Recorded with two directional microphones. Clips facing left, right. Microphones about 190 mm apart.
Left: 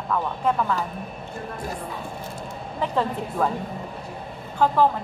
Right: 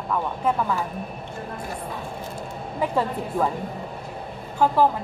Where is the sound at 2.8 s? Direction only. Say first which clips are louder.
Right 1 dB; 10° right (ahead or behind).